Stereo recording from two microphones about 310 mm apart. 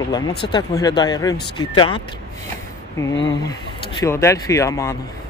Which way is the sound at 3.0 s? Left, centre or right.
Centre.